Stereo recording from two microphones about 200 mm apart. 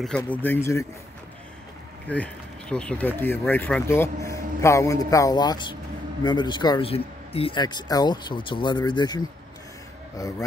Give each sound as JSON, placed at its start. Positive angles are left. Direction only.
{"t": 0.3, "sound": "speech", "side_deg": 10}
{"t": 2.0, "sound": "a man's voice", "side_deg": 5}